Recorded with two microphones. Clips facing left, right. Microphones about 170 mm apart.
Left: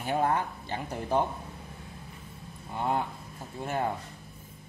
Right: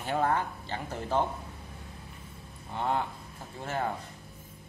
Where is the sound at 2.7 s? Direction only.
10° left (ahead or behind).